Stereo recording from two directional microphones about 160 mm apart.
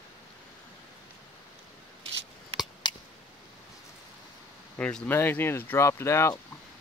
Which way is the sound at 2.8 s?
30° left (ahead or behind).